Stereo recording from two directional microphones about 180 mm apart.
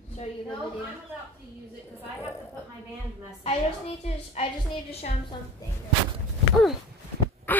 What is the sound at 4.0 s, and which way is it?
Speech, 35° left (ahead or behind).